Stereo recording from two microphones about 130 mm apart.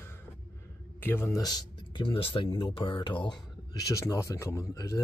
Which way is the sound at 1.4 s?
35° left (ahead or behind).